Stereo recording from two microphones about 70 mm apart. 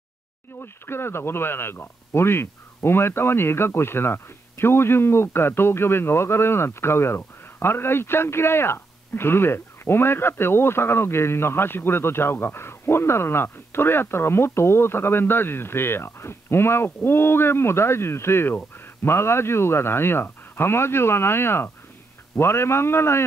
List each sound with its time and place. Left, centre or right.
0.6 s speech: left